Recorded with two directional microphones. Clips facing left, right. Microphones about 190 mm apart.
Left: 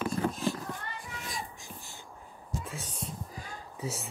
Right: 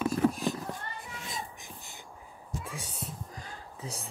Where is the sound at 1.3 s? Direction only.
20° right (ahead or behind).